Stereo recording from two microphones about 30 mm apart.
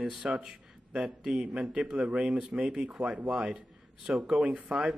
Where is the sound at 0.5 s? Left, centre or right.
Right.